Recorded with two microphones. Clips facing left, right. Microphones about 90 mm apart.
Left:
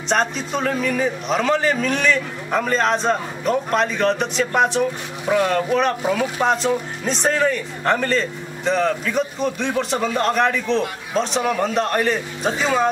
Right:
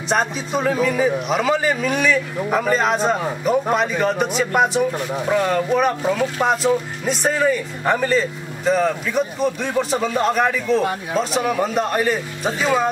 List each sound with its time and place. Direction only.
0.1 s speech: 5° right (ahead or behind)